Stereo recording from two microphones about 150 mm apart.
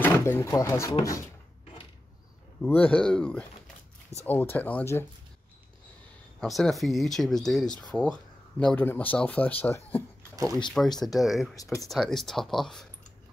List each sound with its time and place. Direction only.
0.0 s speech: 15° left (ahead or behind)
2.6 s speech: 10° left (ahead or behind)
6.4 s speech: centre (ahead or behind)
10.3 s speech: 25° right (ahead or behind)
11.0 s speech: centre (ahead or behind)